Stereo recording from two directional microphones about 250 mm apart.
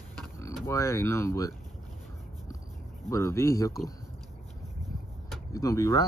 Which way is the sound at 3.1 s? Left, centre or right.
Centre.